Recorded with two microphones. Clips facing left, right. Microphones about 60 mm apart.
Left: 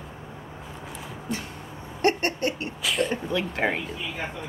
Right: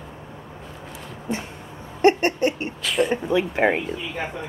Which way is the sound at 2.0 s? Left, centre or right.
Right.